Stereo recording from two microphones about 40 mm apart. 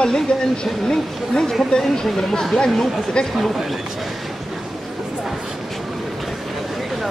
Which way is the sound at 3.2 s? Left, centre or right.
Left.